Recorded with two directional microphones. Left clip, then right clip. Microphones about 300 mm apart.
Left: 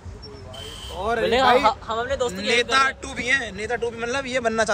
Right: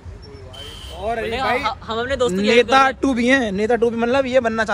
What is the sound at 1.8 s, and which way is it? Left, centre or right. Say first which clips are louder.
Speech: right 4 dB; right.